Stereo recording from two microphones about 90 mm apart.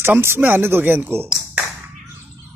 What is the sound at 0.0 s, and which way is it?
Speech, 25° right (ahead or behind).